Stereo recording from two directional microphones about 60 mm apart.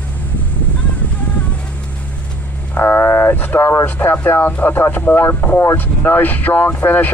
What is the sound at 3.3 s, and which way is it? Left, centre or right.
Speech, left.